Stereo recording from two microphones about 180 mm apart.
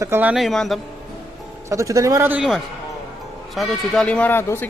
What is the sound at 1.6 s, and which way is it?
Speech, 15° right (ahead or behind).